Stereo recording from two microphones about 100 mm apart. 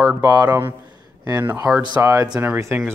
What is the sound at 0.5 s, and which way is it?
Speech, 20° right (ahead or behind).